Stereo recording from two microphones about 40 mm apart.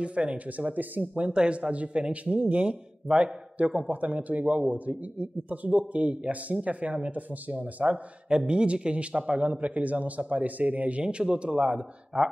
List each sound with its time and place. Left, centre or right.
0.0 s a man's voice: right
1.3 s a man's voice: right
8.3 s a man's voice: right
12.1 s speech: centre